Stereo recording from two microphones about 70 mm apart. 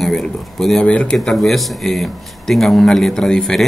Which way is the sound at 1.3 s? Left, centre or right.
Centre.